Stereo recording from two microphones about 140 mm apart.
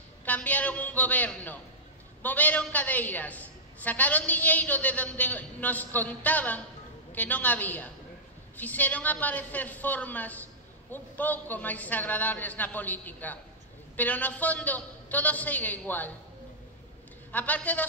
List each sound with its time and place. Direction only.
0.2 s a woman's voice: 10° left (ahead or behind)
17.3 s a woman's voice: 10° left (ahead or behind)